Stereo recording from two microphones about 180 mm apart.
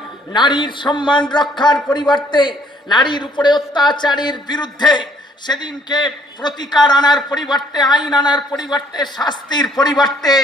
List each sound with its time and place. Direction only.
0.3 s a man's voice: 25° left (ahead or behind)